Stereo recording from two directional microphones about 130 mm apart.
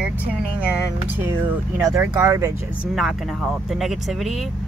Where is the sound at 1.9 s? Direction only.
25° right (ahead or behind).